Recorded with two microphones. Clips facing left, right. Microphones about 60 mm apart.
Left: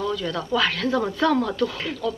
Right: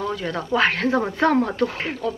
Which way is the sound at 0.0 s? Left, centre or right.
Right.